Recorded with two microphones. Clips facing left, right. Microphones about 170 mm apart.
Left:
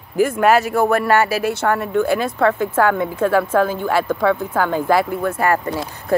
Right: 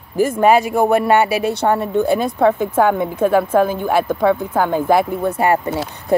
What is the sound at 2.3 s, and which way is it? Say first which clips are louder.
A woman's voice: right 3 dB; 15° right (ahead or behind).